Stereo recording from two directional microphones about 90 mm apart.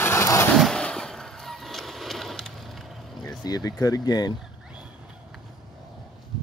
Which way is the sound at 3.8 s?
45° left (ahead or behind).